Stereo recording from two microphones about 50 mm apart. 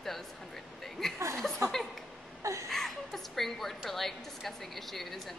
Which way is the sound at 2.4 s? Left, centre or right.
Right.